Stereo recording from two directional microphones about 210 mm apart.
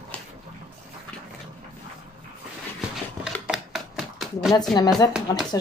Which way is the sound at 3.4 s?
Centre (ahead or behind).